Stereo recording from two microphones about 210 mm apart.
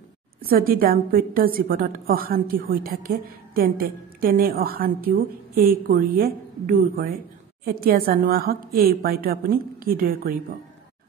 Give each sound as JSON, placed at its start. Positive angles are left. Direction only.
{"t": 0.5, "sound": "a woman's voice", "side_deg": -45}